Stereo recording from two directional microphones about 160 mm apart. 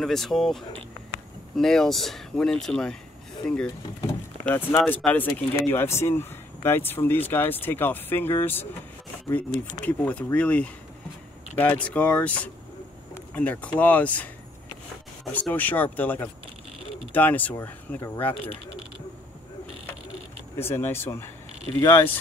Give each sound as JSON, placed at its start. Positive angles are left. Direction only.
{"t": 0.0, "sound": "speech", "side_deg": 0}
{"t": 9.8, "sound": "speech", "side_deg": 10}
{"t": 15.3, "sound": "speech", "side_deg": 10}
{"t": 20.5, "sound": "speech", "side_deg": 15}